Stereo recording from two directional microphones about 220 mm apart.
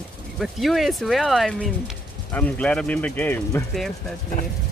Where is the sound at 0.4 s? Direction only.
Centre (ahead or behind).